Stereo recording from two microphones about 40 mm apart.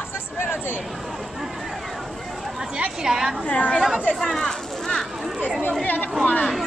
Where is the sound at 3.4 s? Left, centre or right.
Left.